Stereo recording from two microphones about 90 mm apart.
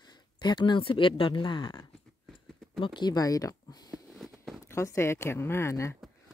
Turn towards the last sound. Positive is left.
turn(degrees=30)  # may be behind; listen again after turning